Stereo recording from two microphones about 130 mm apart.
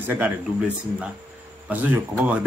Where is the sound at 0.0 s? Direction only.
15° right (ahead or behind).